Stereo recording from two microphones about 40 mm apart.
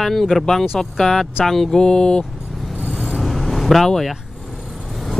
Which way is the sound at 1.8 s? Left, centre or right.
Left.